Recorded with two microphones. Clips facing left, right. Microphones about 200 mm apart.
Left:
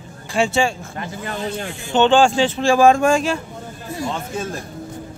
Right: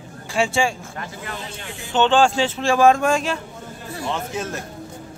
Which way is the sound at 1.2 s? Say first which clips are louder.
Left 8 dB; 40° left (ahead or behind).